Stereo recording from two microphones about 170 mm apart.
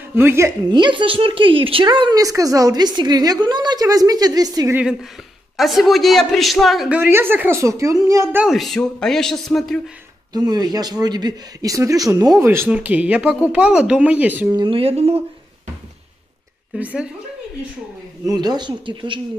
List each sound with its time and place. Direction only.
0.1 s speech: 15° right (ahead or behind)
0.7 s a woman's voice: 25° right (ahead or behind)
5.6 s a woman's voice: centre (ahead or behind)
10.3 s a woman's voice: 25° right (ahead or behind)
14.5 s speech: 30° right (ahead or behind)
16.7 s a woman's voice: 5° right (ahead or behind)
18.2 s a woman's voice: 25° right (ahead or behind)